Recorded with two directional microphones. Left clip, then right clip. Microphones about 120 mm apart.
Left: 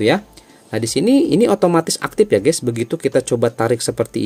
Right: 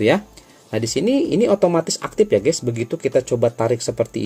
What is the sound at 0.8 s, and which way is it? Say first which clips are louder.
Speech: left 4 dB; 35° left (ahead or behind).